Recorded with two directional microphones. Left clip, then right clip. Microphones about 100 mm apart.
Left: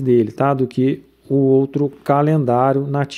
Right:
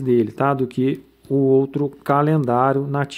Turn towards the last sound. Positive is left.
turn(degrees=30)  # may be behind; listen again after turning